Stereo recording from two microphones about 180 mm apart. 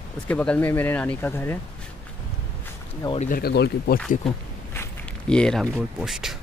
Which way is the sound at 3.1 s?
50° left (ahead or behind).